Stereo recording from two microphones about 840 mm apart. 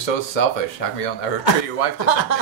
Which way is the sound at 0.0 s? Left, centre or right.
Left.